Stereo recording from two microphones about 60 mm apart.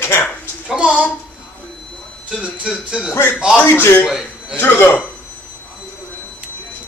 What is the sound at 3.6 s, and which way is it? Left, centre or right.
A man's voice, left.